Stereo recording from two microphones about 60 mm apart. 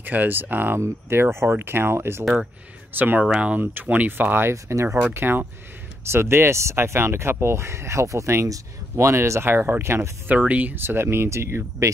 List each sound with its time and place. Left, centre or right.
0.0 s speech: right
0.7 s speech: right
3.2 s speech: centre; by 4.9 s right
5.1 s speech: right
10.2 s speech: right
10.8 s speech: right